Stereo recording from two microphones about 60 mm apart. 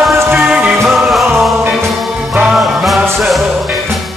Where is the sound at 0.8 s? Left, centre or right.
Centre.